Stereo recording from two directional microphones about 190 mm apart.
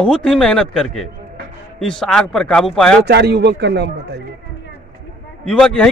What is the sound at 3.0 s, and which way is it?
Speech, 60° right (ahead or behind).